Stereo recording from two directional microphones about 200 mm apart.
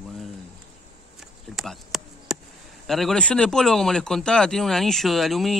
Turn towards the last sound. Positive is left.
turn(degrees=0)  # may be behind; listen again after turning